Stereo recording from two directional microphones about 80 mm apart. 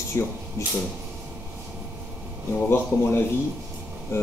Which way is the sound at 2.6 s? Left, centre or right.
Left.